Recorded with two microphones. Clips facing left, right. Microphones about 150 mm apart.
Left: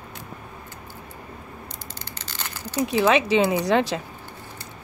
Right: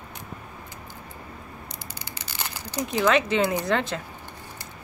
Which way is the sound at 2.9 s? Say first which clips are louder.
Left 2 dB; 15° left (ahead or behind).